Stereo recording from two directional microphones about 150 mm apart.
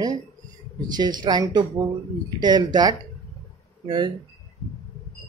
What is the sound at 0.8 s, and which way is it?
Speech, 30° right (ahead or behind).